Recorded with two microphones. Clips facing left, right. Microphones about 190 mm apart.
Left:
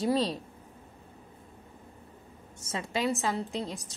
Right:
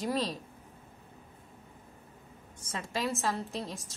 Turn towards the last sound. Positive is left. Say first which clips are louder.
# left 3 dB
turn(degrees=0)  # may be behind; listen again after turning